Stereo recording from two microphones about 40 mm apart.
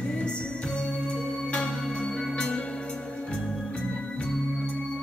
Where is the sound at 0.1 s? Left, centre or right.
Left.